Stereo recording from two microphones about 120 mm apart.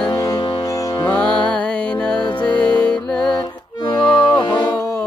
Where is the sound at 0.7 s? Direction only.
30° left (ahead or behind).